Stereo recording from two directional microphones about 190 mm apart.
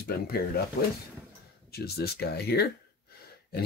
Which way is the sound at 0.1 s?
50° left (ahead or behind).